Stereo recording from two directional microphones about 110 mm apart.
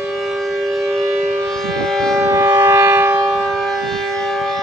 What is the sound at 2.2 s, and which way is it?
Civil defense siren, 25° right (ahead or behind).